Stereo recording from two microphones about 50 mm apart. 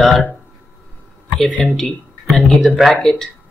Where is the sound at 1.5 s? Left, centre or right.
Left.